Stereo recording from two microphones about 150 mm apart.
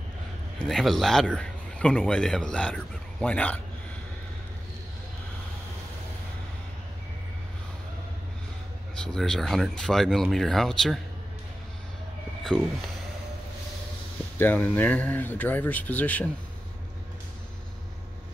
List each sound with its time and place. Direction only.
0.6 s speech: 5° left (ahead or behind)
8.9 s speech: 5° left (ahead or behind)
12.5 s speech: 5° left (ahead or behind)
14.4 s speech: 10° left (ahead or behind)